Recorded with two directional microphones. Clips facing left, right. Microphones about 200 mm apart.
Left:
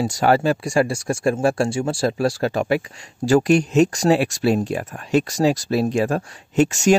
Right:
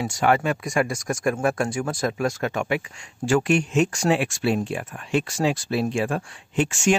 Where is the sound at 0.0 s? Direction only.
35° left (ahead or behind).